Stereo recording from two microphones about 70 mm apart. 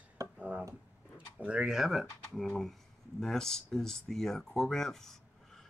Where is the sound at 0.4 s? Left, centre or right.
Right.